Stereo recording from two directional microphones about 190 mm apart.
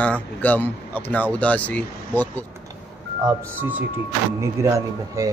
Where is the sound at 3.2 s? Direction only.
15° right (ahead or behind).